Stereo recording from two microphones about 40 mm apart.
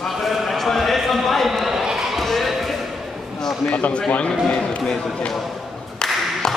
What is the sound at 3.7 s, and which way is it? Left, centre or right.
Speech, left.